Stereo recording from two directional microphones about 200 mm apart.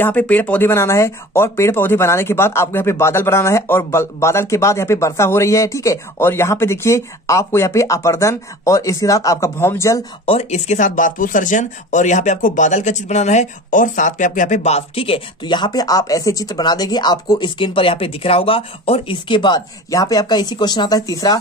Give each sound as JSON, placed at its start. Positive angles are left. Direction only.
{"t": 0.0, "sound": "speech", "side_deg": 10}
{"t": 10.2, "sound": "speech", "side_deg": 30}